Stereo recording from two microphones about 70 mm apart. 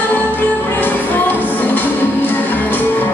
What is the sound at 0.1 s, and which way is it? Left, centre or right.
Music, left.